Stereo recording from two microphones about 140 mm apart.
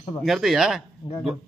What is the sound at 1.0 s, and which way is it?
Speech, 35° left (ahead or behind).